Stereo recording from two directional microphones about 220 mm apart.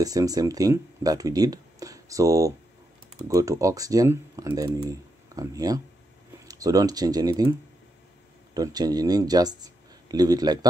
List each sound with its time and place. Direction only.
0.0 s speech: 15° right (ahead or behind)
8.5 s speech: 15° right (ahead or behind)